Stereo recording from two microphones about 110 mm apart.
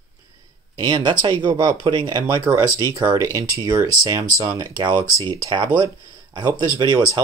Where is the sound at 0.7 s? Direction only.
40° right (ahead or behind).